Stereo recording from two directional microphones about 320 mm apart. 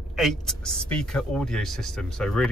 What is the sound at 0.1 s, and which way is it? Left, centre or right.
Speech, centre.